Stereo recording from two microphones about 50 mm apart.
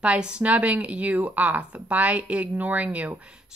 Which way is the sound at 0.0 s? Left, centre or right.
Centre.